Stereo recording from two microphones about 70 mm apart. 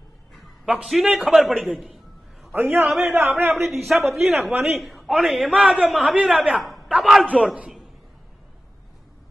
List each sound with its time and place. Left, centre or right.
0.8 s a man's voice: centre
2.5 s a man's voice: right
2.8 s a man's voice: centre
3.2 s a man's voice: right
3.6 s a man's voice: centre
5.5 s a man's voice: centre
5.9 s a man's voice: centre
6.5 s a sound: centre
7.2 s a man's voice: centre